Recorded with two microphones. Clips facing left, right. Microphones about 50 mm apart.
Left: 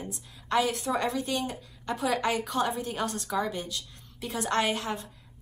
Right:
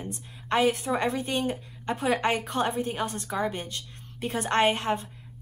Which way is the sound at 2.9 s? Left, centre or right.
Right.